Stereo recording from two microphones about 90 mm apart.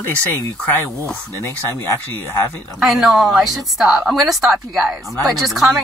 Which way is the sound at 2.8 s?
Centre (ahead or behind).